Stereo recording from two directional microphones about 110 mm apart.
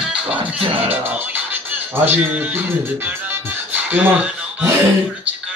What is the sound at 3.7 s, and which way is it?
Music, 20° right (ahead or behind).